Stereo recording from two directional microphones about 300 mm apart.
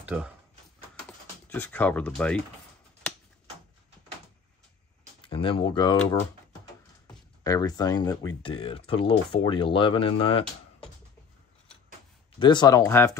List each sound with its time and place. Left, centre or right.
0.0 s speech: centre
1.5 s speech: centre
5.2 s speech: centre
7.4 s speech: centre
12.4 s speech: centre